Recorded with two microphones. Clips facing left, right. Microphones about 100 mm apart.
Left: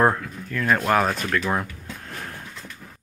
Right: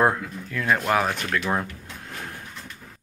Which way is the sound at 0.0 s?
10° right (ahead or behind).